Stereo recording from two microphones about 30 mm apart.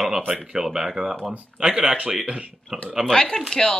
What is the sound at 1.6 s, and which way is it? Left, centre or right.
Speech, right.